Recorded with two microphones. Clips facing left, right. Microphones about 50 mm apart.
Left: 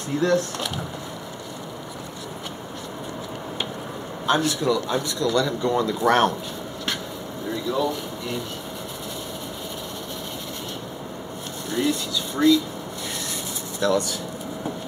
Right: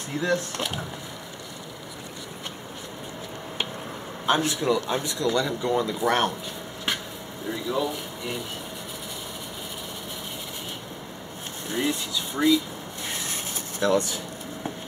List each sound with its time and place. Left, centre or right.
0.2 s speech: centre
4.3 s speech: right; by 6.3 s centre
7.5 s speech: centre
11.7 s speech: centre
13.3 s a sound: right